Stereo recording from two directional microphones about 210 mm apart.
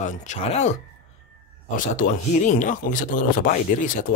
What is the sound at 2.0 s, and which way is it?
Speech, 35° left (ahead or behind).